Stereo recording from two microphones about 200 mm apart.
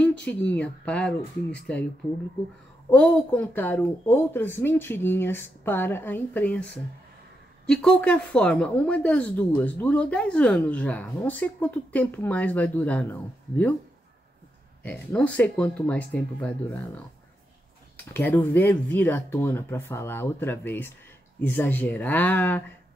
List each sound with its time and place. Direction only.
0.1 s speech: 60° left (ahead or behind)
0.5 s speech: 5° left (ahead or behind)
2.9 s speech: 10° left (ahead or behind)
14.8 s speech: 5° left (ahead or behind)